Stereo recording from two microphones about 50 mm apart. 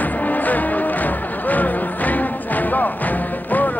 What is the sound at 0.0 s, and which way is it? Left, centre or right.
Music, left.